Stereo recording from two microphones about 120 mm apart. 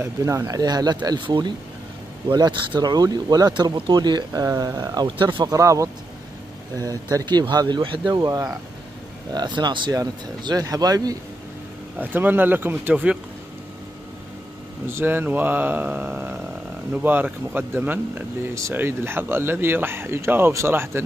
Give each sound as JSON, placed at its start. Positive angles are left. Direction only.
{"t": 0.0, "sound": "speech", "side_deg": -25}
{"t": 12.0, "sound": "speech", "side_deg": -15}
{"t": 14.9, "sound": "speech", "side_deg": -20}